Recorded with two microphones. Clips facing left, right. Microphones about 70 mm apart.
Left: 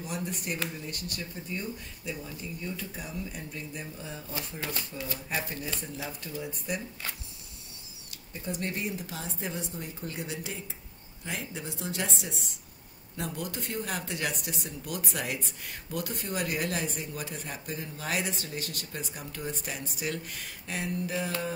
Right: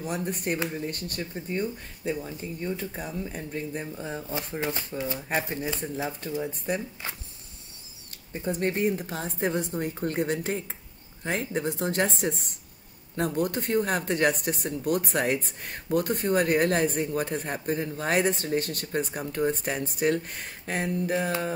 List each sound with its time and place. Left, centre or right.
0.0 s speech: right
5.3 s speech: right
8.3 s speech: right